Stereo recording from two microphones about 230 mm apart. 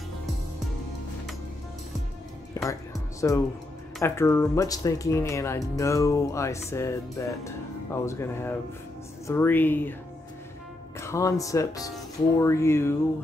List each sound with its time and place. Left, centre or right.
2.5 s music: centre
4.0 s speech: centre
11.0 s speech: centre